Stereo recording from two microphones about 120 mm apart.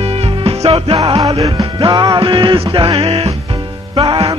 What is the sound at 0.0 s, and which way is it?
Music, 55° right (ahead or behind).